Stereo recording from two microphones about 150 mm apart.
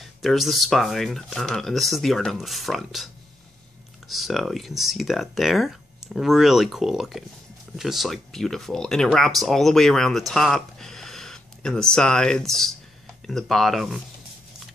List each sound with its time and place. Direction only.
0.0 s speech: centre (ahead or behind)
4.1 s speech: centre (ahead or behind)